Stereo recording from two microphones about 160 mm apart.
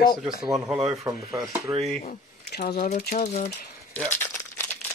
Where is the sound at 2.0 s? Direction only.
75° left (ahead or behind).